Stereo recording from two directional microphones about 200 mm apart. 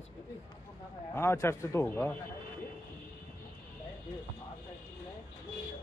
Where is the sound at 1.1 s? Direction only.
15° left (ahead or behind).